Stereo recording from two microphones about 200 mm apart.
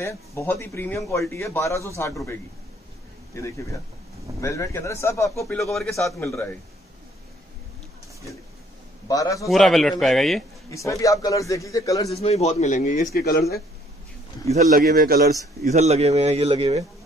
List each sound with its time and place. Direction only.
0.0 s a man's voice: 15° left (ahead or behind)
3.3 s a man's voice: 15° left (ahead or behind)
5.6 s a man's voice: centre (ahead or behind)
6.1 s a man's voice: 15° left (ahead or behind)
9.0 s a man's voice: 15° left (ahead or behind)
9.5 s a man's voice: centre (ahead or behind)
10.7 s a man's voice: 15° left (ahead or behind)
12.1 s a man's voice: 30° left (ahead or behind); by 13.6 s 50° left (ahead or behind)
14.5 s a man's voice: 40° right (ahead or behind)
15.6 s a man's voice: 35° right (ahead or behind)